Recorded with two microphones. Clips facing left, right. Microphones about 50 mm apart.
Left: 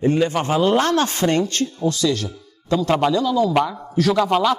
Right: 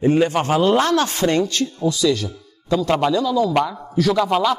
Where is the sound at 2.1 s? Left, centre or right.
Left.